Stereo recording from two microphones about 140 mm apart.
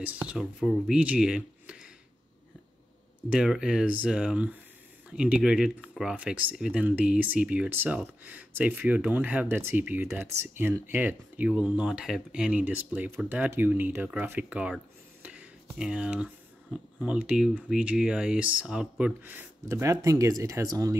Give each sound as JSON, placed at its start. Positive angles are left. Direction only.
{"t": 0.0, "sound": "speech", "side_deg": -10}
{"t": 3.3, "sound": "speech", "side_deg": -5}
{"t": 15.2, "sound": "a sound", "side_deg": -10}
{"t": 17.0, "sound": "speech", "side_deg": -10}
{"t": 19.7, "sound": "speech", "side_deg": -20}